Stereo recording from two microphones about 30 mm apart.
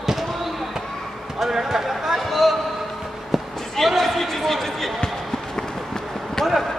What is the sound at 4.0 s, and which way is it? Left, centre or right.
Speech, centre.